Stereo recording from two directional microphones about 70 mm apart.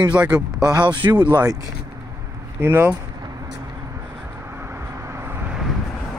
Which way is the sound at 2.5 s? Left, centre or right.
Right.